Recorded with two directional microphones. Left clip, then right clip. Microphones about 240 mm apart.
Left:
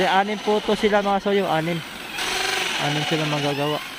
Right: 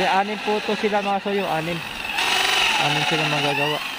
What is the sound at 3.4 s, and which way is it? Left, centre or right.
Speech, centre.